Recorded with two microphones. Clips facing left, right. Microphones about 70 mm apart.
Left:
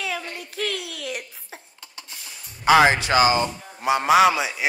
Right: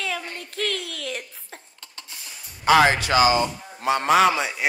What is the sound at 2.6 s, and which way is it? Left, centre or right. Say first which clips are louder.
Speech: left 1 dB; centre.